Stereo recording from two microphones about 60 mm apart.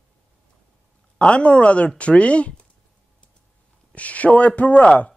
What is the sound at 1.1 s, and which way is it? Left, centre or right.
Speech, centre.